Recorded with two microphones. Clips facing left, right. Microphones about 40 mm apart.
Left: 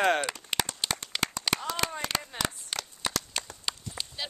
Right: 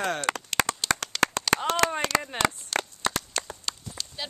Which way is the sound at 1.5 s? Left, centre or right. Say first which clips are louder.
Right 7 dB; right.